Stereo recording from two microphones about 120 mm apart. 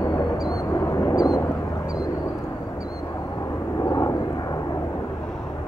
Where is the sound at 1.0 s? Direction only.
30° left (ahead or behind).